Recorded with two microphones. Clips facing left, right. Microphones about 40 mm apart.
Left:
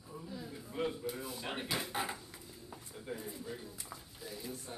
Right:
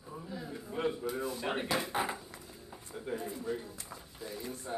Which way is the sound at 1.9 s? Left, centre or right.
Centre.